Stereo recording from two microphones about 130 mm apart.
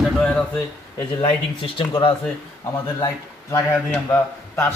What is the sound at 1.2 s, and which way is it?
Speech, 40° left (ahead or behind).